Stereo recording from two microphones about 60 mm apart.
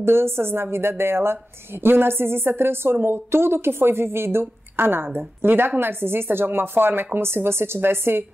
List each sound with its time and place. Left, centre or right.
0.0 s a woman's voice: right